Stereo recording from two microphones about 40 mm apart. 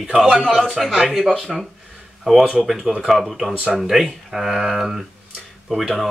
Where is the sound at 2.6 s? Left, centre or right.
Centre.